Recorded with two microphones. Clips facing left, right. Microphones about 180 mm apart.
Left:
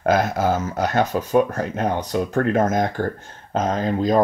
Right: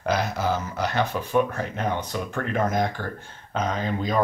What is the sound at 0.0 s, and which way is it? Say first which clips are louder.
Speech: left 6 dB; 50° left (ahead or behind).